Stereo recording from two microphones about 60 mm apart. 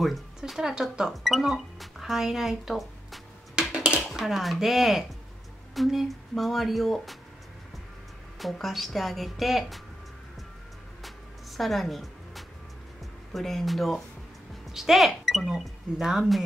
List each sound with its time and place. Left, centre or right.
0.0 s speech: centre
3.5 s a sound: centre
4.1 s speech: centre
8.4 s speech: centre
11.0 s music: centre
13.3 s speech: centre